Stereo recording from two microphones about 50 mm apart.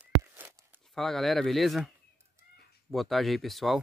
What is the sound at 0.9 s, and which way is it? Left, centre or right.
Speech, centre.